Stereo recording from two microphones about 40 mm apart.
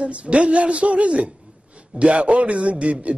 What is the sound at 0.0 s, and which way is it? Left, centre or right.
A man's voice, right.